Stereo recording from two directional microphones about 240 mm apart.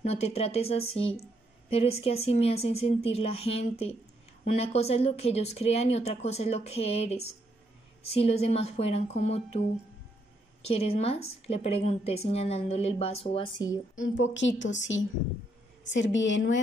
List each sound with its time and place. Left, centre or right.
0.0 s speech: left
10.7 s speech: left
13.9 s a woman's voice: left